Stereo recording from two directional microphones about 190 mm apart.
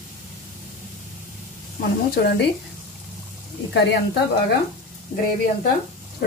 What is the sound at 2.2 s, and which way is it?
Speech, 55° left (ahead or behind).